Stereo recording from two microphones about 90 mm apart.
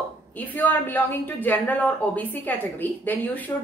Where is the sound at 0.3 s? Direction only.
20° left (ahead or behind).